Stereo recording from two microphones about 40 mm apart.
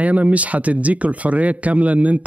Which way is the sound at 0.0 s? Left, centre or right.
Right.